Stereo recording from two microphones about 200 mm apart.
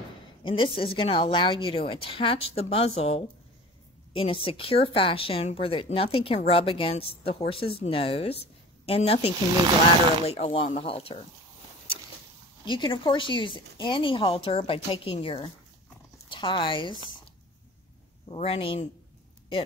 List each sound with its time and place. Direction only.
0.4 s speech: 25° left (ahead or behind)
12.6 s speech: 25° left (ahead or behind)
18.3 s speech: 30° left (ahead or behind)